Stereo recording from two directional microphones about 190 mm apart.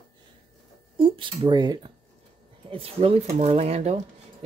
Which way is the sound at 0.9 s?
25° right (ahead or behind).